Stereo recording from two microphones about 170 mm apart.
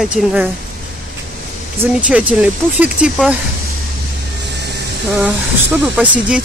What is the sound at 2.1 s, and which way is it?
Speech, 5° right (ahead or behind).